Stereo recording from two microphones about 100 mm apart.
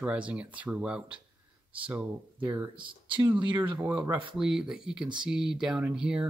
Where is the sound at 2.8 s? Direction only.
55° right (ahead or behind).